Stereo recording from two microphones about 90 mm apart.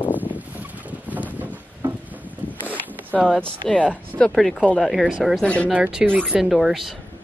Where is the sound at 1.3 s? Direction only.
20° right (ahead or behind).